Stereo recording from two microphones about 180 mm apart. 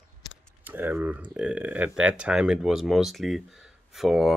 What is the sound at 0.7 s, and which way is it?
Speech, 10° right (ahead or behind).